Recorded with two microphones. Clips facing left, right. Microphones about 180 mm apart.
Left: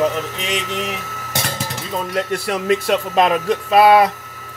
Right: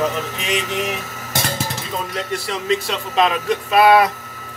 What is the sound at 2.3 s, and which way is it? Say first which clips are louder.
Speech: left 1 dB; 55° left (ahead or behind).